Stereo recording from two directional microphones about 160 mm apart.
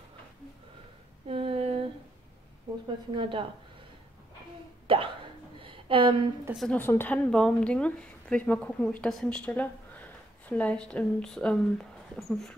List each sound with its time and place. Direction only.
1.2 s a sound: 35° right (ahead or behind)
3.2 s a woman's voice: 30° right (ahead or behind)
4.8 s hiccup: 35° right (ahead or behind)
5.6 s a sound: 35° right (ahead or behind)
6.5 s speech: centre (ahead or behind)
6.8 s a woman's voice: 15° left (ahead or behind)